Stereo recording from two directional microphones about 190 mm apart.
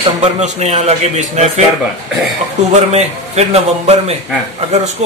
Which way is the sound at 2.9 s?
35° right (ahead or behind).